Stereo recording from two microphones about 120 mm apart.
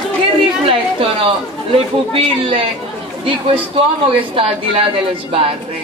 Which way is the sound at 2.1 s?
45° right (ahead or behind).